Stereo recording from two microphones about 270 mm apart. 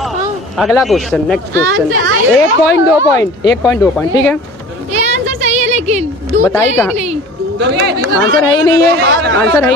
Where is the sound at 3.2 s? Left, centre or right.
Centre.